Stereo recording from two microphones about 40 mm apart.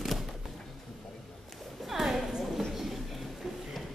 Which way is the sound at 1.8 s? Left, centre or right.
Centre.